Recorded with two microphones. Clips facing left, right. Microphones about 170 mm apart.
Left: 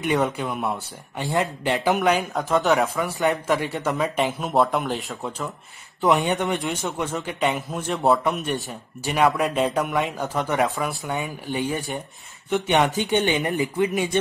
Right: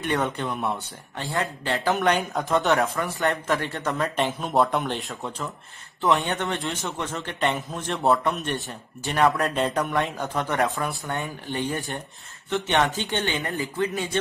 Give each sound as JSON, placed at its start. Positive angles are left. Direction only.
{"t": 0.0, "sound": "a man's voice", "side_deg": 5}
{"t": 1.2, "sound": "speech", "side_deg": 20}
{"t": 2.0, "sound": "a man's voice", "side_deg": 0}
{"t": 5.9, "sound": "speech", "side_deg": 15}
{"t": 7.2, "sound": "a man's voice", "side_deg": 0}
{"t": 12.4, "sound": "speech", "side_deg": 10}